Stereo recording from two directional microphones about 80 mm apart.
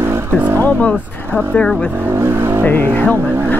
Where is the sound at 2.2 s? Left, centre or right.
Right.